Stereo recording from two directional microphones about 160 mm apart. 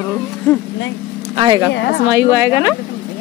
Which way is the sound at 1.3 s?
30° right (ahead or behind).